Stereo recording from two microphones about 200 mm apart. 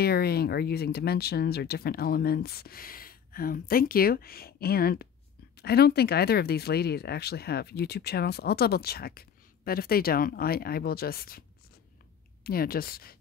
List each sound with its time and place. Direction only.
0.0 s speech: 50° left (ahead or behind)
12.4 s speech: 50° left (ahead or behind)